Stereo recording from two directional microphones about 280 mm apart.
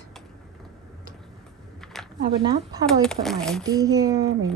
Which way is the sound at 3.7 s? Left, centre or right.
Centre.